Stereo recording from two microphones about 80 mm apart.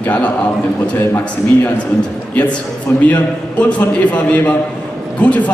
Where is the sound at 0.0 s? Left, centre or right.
Left.